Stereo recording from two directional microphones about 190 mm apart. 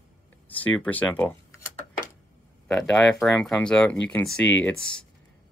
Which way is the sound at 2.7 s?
5° left (ahead or behind).